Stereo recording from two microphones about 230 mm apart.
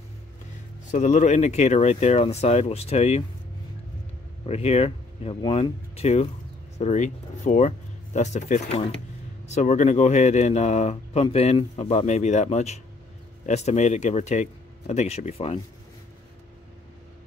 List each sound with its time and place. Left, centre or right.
0.9 s speech: left
4.5 s speech: left